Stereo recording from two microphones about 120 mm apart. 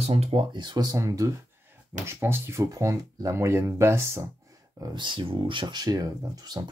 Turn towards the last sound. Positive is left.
turn(degrees=-30)  # may be behind; listen again after turning